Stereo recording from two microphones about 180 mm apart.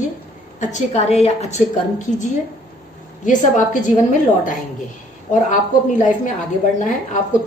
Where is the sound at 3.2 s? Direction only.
45° left (ahead or behind).